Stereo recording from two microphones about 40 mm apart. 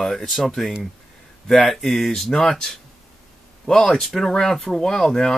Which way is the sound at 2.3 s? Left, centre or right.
Centre.